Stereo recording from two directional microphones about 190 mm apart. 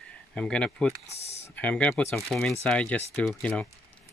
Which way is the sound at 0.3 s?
5° left (ahead or behind).